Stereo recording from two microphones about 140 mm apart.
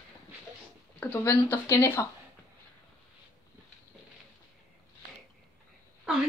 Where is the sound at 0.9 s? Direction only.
15° left (ahead or behind).